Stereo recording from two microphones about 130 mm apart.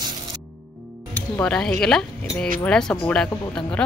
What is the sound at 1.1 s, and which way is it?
Speech, 10° left (ahead or behind).